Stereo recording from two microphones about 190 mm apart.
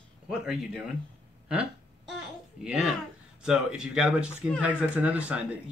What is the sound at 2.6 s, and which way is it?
Speech, 5° right (ahead or behind).